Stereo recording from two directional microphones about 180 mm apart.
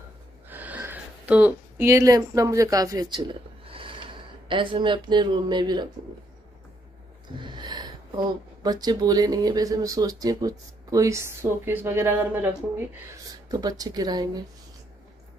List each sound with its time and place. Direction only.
0.5 s speech: 10° right (ahead or behind)
7.3 s speech: 25° right (ahead or behind)